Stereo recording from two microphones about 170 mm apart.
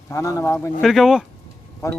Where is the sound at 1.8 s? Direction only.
15° left (ahead or behind).